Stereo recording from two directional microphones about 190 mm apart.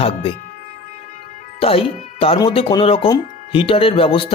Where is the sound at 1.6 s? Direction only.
30° left (ahead or behind).